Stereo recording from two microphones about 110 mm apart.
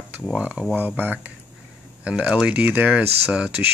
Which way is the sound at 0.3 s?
10° right (ahead or behind).